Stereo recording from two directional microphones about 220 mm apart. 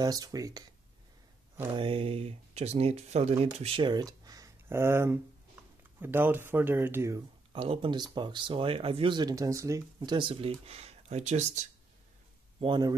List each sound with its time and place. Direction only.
0.0 s speech: 15° right (ahead or behind)
1.8 s speech: 25° right (ahead or behind)
12.5 s speech: 20° right (ahead or behind)